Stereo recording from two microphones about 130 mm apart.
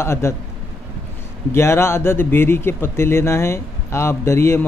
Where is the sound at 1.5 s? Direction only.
20° left (ahead or behind).